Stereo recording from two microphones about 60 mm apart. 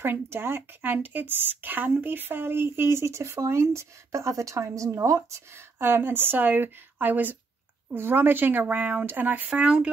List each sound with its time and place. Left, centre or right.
0.0 s speech: right
5.8 s speech: right
9.5 s speech: centre